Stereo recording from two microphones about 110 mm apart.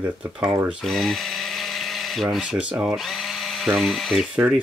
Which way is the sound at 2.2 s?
10° right (ahead or behind).